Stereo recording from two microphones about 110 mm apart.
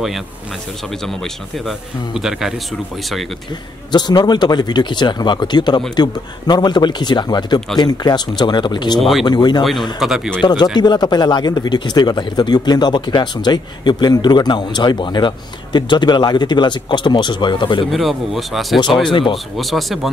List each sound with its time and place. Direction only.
1.0 s a man's voice: centre (ahead or behind)
3.9 s speech: 40° left (ahead or behind)
9.9 s a man's voice: 5° right (ahead or behind)
10.4 s speech: 40° left (ahead or behind)
17.9 s a man's voice: centre (ahead or behind)